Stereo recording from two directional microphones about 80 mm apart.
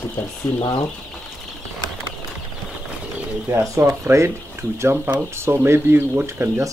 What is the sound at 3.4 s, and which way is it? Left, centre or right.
Speech, right.